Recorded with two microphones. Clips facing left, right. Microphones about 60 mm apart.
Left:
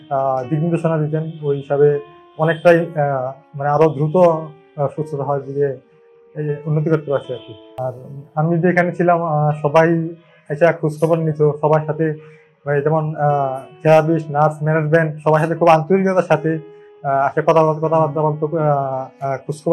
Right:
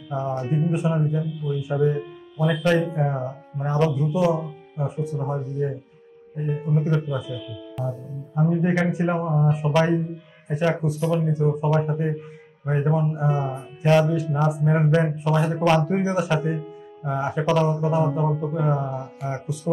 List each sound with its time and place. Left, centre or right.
0.1 s speech: left
7.8 s mantra: centre
8.4 s speech: left
10.5 s speech: left
11.0 s speech: left
13.3 s mantra: centre
13.8 s speech: left
14.1 s speech: left
15.9 s speech: left
17.7 s speech: left